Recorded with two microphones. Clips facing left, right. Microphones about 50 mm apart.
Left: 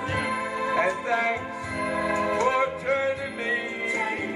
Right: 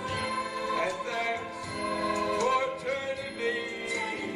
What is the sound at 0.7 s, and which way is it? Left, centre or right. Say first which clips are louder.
Music: left 8 dB; left.